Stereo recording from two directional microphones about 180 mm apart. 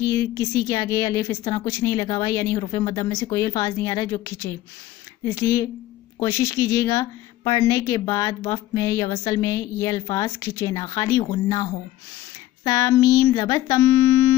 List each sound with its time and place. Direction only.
0.0 s a woman's voice: 20° left (ahead or behind)